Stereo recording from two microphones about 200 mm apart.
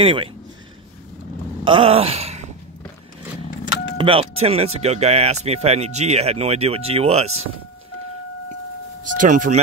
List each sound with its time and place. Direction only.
0.0 s speech: 25° right (ahead or behind)
1.6 s a sound: 25° right (ahead or behind)
3.6 s speech: 30° right (ahead or behind)
9.2 s speech: 40° right (ahead or behind)